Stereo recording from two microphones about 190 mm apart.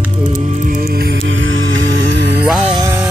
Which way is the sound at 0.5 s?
45° right (ahead or behind).